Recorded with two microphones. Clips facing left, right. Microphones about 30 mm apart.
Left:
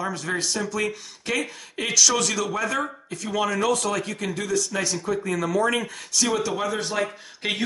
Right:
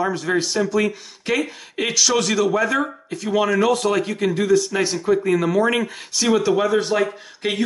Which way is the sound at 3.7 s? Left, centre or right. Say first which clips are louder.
Right 6 dB; right.